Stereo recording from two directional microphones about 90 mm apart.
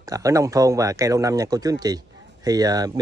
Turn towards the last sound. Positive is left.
turn(degrees=-45)  # may be behind; listen again after turning